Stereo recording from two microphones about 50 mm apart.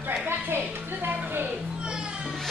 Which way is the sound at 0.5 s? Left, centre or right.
Right.